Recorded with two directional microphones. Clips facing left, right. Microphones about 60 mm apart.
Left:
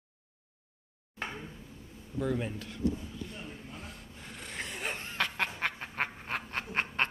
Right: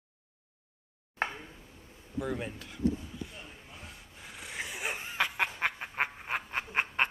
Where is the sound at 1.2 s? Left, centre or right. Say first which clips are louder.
Right 5 dB; right.